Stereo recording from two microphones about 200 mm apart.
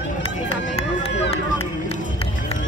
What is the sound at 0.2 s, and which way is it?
Run, 30° left (ahead or behind).